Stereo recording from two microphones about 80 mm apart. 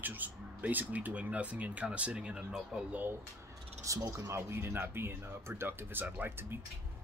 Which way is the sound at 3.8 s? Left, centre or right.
Right.